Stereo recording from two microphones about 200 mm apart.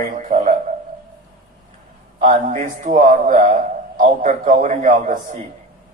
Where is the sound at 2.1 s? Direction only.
40° right (ahead or behind).